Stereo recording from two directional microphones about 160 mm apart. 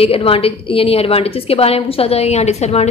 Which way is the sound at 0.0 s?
35° left (ahead or behind).